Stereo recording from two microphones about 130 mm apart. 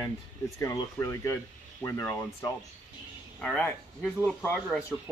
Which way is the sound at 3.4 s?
10° left (ahead or behind).